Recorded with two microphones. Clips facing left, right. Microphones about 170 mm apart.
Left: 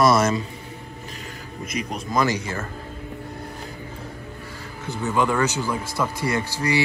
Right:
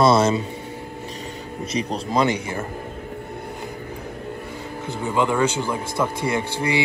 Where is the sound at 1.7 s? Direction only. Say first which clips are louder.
Right 3 dB; 30° right (ahead or behind).